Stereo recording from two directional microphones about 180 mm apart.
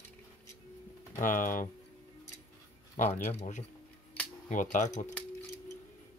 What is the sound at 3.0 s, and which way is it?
Speech, 45° left (ahead or behind).